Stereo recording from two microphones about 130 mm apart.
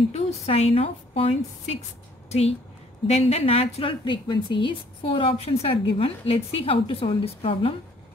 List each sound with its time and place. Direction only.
0.1 s a woman's voice: 55° left (ahead or behind)
2.2 s a sound: 55° left (ahead or behind)
3.1 s a woman's voice: 55° left (ahead or behind)
4.0 s a woman's voice: 40° left (ahead or behind)